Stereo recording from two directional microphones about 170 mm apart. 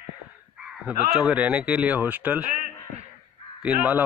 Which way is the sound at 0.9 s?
5° right (ahead or behind).